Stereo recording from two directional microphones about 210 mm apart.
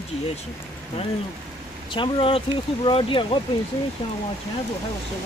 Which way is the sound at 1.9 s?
25° left (ahead or behind).